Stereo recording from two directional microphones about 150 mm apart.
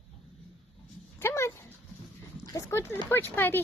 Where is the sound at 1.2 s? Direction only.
15° left (ahead or behind).